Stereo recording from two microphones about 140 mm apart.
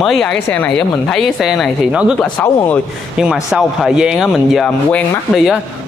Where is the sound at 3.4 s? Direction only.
5° right (ahead or behind).